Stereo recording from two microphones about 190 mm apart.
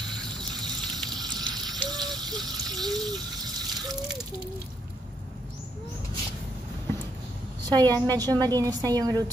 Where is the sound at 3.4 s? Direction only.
20° right (ahead or behind).